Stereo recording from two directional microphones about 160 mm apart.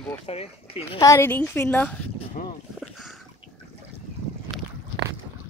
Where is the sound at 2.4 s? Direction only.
55° left (ahead or behind).